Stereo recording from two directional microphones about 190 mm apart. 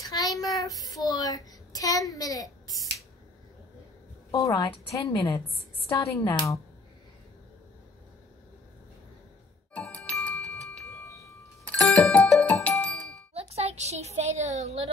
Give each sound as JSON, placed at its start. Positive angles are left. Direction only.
{"t": 0.0, "sound": "child singing", "side_deg": 20}
{"t": 0.4, "sound": "a woman's voice", "side_deg": 20}
{"t": 4.3, "sound": "a woman's voice", "side_deg": 15}
{"t": 9.8, "sound": "music", "side_deg": 5}
{"t": 11.1, "sound": "wind chime", "side_deg": 15}
{"t": 11.7, "sound": "music", "side_deg": 5}
{"t": 13.3, "sound": "music", "side_deg": -35}